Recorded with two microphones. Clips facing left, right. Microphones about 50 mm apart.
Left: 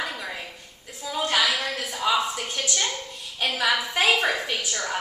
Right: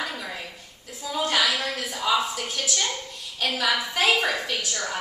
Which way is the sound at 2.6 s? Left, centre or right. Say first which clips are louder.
Left 1 dB; centre.